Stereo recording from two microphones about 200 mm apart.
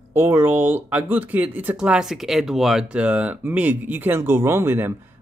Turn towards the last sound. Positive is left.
turn(degrees=-10)  # may be behind; listen again after turning